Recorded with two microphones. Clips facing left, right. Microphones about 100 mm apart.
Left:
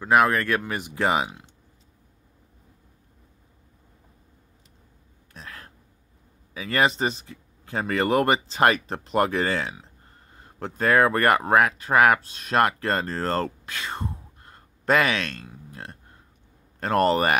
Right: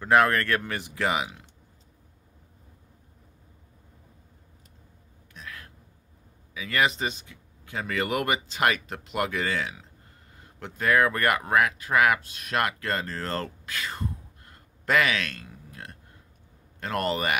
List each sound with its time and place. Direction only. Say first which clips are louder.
0.0 s speech: left 1 dB; 10° left (ahead or behind); by 1.4 s 30° left (ahead or behind)
5.3 s a sound: left 1 dB; 35° left (ahead or behind)
6.5 s speech: left 3 dB; 35° left (ahead or behind)